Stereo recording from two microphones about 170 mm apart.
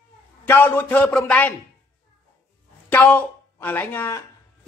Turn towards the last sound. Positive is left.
turn(degrees=10)  # may be behind; listen again after turning